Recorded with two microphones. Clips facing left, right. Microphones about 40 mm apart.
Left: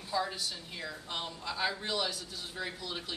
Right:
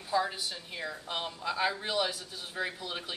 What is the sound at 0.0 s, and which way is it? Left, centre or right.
A woman's voice, centre.